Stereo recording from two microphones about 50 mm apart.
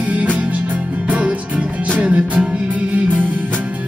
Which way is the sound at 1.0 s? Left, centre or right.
Right.